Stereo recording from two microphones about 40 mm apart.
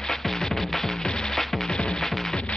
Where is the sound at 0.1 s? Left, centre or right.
Centre.